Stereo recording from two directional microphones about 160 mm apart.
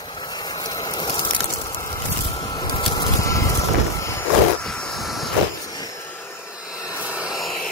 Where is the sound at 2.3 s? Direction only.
25° left (ahead or behind).